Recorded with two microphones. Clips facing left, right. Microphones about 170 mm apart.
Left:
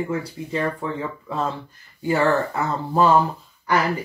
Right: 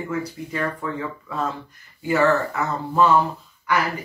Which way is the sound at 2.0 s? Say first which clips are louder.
Even; 30° left (ahead or behind).